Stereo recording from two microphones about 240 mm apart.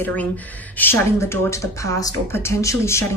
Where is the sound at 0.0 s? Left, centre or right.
Centre.